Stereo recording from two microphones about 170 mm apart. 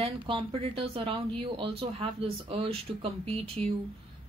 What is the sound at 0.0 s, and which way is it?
A woman's voice, 30° right (ahead or behind).